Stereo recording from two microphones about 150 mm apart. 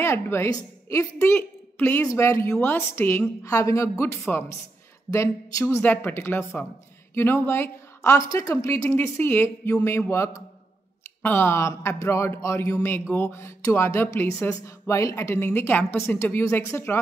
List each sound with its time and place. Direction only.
0.0 s a woman's voice: 15° left (ahead or behind)